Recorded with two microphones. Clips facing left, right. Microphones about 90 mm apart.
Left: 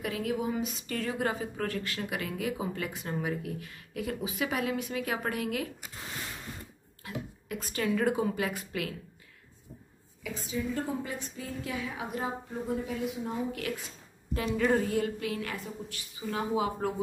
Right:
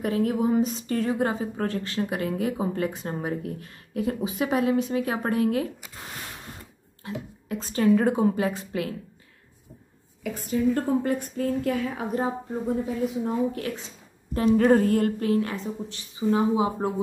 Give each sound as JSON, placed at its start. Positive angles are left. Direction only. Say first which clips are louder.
{"t": 0.0, "sound": "a woman's voice", "louder": "right 8 dB", "side_deg": -40}
{"t": 10.2, "sound": "a woman's voice", "louder": "right 9 dB", "side_deg": -55}
{"t": 14.3, "sound": "a woman's voice", "louder": "right 8 dB", "side_deg": -40}